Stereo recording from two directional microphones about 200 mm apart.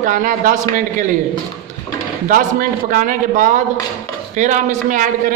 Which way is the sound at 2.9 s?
40° right (ahead or behind).